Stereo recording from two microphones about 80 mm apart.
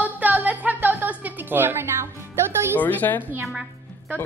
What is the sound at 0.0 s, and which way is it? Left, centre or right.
Music, right.